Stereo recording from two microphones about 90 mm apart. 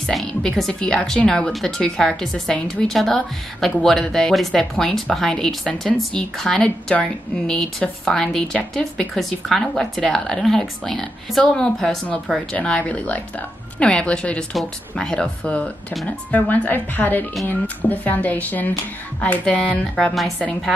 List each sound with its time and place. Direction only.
0.0 s speech: 5° left (ahead or behind)